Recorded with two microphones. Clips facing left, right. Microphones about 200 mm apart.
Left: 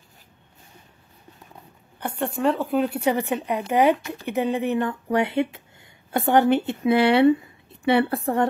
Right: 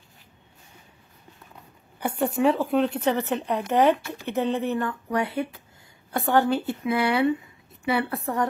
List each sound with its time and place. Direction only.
2.0 s a woman's voice: 5° right (ahead or behind); by 8.2 s 30° left (ahead or behind)